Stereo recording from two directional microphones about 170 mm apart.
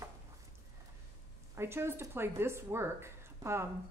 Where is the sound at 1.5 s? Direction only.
15° right (ahead or behind).